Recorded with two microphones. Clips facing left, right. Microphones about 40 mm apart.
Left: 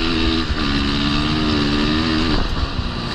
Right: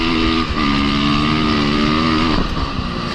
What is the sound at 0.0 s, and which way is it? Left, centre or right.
Vehicle, right.